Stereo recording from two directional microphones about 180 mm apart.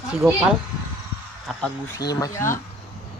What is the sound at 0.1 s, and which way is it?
Speech, 5° right (ahead or behind).